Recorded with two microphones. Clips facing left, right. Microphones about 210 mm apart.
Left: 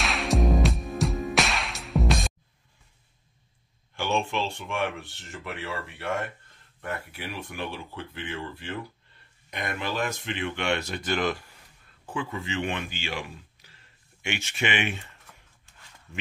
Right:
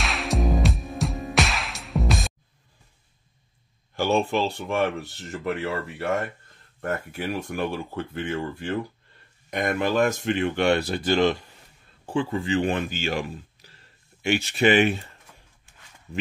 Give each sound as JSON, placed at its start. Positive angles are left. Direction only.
{"t": 0.0, "sound": "music", "side_deg": 0}
{"t": 3.9, "sound": "speech", "side_deg": -40}